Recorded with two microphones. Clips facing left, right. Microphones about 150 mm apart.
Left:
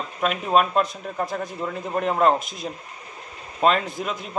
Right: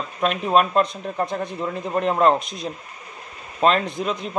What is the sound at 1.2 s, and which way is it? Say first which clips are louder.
Speech: right 2 dB; 25° right (ahead or behind).